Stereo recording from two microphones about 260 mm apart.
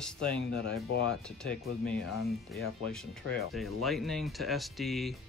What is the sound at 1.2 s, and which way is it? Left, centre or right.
Speech, centre.